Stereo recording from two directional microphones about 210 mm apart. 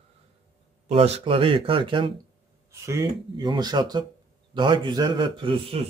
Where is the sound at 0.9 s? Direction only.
30° right (ahead or behind).